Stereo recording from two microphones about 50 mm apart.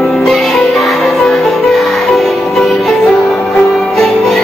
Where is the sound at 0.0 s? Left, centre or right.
Centre.